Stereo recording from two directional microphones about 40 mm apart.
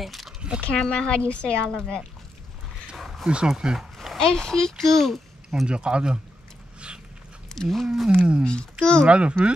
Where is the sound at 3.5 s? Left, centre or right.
Centre.